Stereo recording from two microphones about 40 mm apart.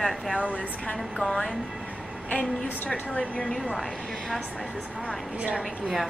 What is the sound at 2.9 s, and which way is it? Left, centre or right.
Speech, left.